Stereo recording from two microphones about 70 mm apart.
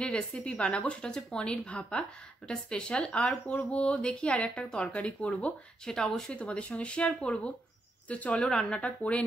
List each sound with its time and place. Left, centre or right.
0.0 s a woman's voice: centre
5.9 s speech: centre
6.3 s a woman's voice: centre